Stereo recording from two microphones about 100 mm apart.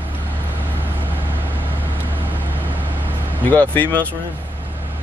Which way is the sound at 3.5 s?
15° left (ahead or behind).